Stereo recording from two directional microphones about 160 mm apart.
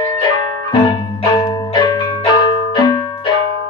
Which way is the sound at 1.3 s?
25° left (ahead or behind).